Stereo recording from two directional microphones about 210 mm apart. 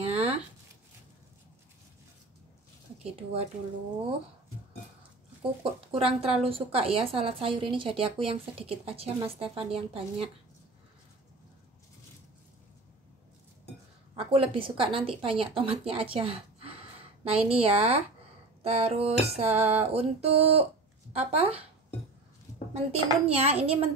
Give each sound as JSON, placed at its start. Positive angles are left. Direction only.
{"t": 0.0, "sound": "a sound", "side_deg": -30}
{"t": 5.6, "sound": "a woman's voice", "side_deg": -25}
{"t": 14.1, "sound": "a woman's voice", "side_deg": -25}
{"t": 22.8, "sound": "a woman's voice", "side_deg": -30}